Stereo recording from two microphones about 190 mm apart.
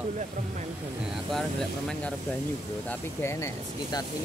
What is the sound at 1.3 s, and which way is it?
Speech, centre (ahead or behind).